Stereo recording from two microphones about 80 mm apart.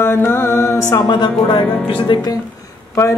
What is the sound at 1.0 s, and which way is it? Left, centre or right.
Speech, left.